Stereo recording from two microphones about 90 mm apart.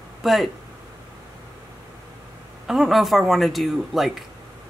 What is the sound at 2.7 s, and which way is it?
Speech, centre (ahead or behind).